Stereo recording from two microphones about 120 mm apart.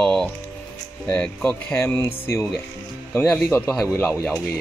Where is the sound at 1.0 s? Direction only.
15° left (ahead or behind).